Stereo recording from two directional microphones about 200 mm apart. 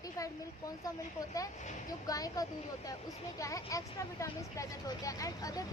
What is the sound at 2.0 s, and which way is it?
Speech, 20° left (ahead or behind).